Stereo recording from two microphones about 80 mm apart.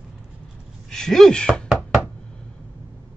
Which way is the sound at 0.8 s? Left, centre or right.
Centre.